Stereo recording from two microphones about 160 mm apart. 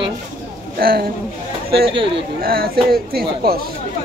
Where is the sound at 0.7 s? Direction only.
65° right (ahead or behind).